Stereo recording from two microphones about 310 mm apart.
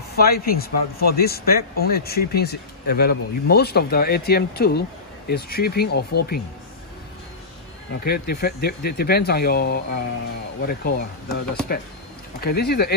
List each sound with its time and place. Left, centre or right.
0.1 s speech: left
8.0 s speech: left